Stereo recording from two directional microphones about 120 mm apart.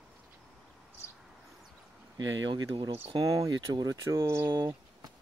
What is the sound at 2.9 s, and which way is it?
Speech, 50° right (ahead or behind).